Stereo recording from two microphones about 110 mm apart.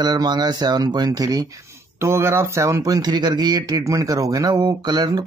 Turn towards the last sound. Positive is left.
turn(degrees=-40)  # may be behind; listen again after turning